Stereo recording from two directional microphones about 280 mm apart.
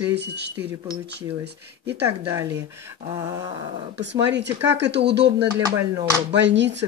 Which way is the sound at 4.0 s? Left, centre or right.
Right.